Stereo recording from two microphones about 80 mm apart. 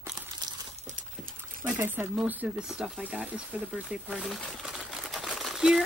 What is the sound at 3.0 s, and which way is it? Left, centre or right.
Speech, centre.